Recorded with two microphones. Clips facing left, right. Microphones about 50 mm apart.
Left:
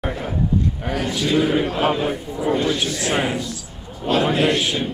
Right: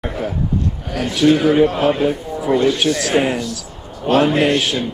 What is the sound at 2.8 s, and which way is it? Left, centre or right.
Speech, right.